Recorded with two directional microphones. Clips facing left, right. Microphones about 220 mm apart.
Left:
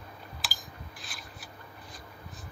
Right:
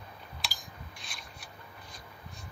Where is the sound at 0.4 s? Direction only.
Centre (ahead or behind).